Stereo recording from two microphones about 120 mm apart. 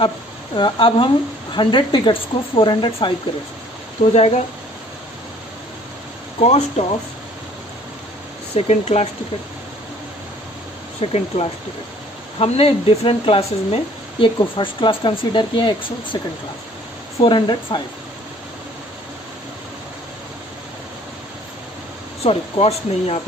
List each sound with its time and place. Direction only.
0.6 s a woman's voice: 45° left (ahead or behind)
6.4 s speech: 60° left (ahead or behind)
8.5 s speech: 55° left (ahead or behind)
11.0 s a woman's voice: 55° left (ahead or behind)
14.2 s a woman's voice: 45° left (ahead or behind)
17.2 s speech: 45° left (ahead or behind)
22.2 s speech: 60° left (ahead or behind)